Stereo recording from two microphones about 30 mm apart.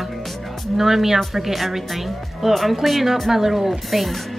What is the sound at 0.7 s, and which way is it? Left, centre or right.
Speech, centre.